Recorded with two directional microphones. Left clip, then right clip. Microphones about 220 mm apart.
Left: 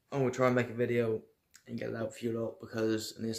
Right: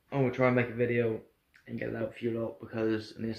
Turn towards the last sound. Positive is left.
turn(degrees=20)  # may be behind; listen again after turning